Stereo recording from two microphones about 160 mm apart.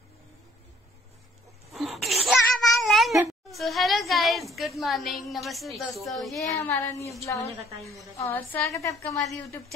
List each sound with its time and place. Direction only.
1.7 s cat: centre (ahead or behind)
3.4 s a sound: centre (ahead or behind)
6.3 s speech: 20° left (ahead or behind)
8.2 s a woman's voice: 15° left (ahead or behind)